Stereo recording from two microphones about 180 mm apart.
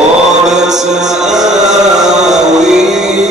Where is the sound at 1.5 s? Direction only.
40° right (ahead or behind).